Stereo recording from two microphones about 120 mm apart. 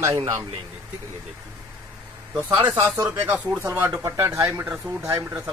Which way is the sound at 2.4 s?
15° right (ahead or behind).